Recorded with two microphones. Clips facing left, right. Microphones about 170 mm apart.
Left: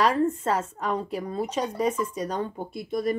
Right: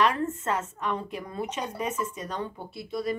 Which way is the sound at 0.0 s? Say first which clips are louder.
Left 3 dB; 35° left (ahead or behind).